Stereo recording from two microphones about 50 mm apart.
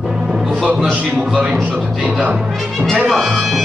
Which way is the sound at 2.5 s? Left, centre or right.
Centre.